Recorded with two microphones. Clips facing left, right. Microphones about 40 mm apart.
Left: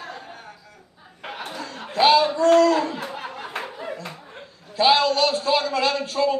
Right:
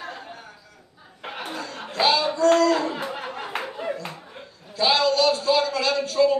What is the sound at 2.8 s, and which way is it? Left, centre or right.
Speech, right.